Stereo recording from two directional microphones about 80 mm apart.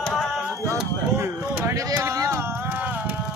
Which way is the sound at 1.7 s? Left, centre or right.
Right.